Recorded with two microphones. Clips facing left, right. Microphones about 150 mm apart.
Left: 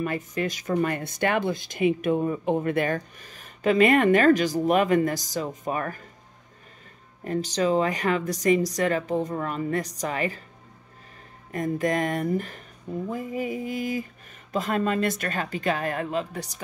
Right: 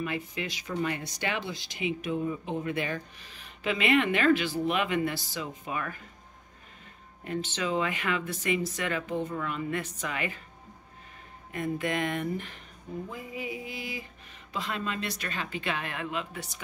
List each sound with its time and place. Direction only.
0.0 s speech: 45° left (ahead or behind)
7.2 s a woman's voice: 40° left (ahead or behind)
11.5 s a woman's voice: 40° left (ahead or behind)